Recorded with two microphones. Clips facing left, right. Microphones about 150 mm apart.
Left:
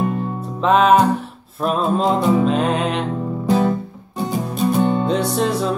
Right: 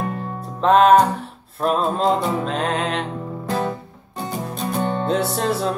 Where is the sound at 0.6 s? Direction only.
5° left (ahead or behind).